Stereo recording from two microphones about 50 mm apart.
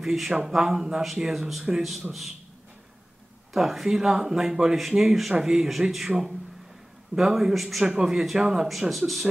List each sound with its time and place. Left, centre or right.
0.0 s a man's voice: centre
3.5 s a man's voice: centre